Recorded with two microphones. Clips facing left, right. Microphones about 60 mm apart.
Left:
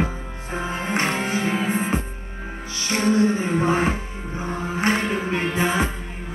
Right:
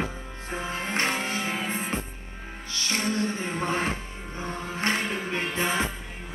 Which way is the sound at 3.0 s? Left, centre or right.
Centre.